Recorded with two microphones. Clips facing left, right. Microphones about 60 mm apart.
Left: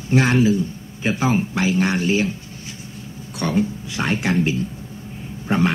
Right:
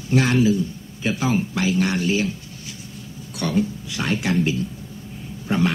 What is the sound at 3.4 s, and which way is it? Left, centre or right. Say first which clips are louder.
Speech: left 1 dB; left.